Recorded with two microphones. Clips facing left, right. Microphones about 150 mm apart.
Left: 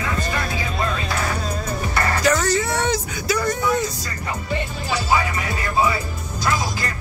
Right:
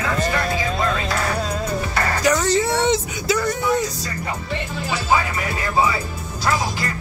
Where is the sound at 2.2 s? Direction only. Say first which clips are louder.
Right 1 dB; 15° right (ahead or behind).